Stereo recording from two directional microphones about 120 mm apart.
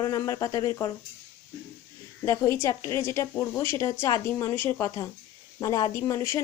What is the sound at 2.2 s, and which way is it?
A woman's voice, 25° left (ahead or behind).